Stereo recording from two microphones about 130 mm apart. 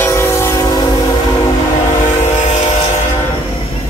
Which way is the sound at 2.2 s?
60° left (ahead or behind).